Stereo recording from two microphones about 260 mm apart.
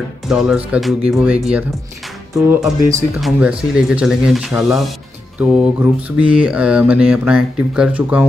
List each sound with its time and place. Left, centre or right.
0.3 s mantra: centre
2.5 s speech: centre
3.2 s mantra: centre